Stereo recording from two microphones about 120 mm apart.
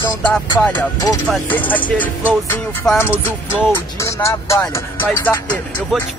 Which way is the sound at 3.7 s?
25° left (ahead or behind).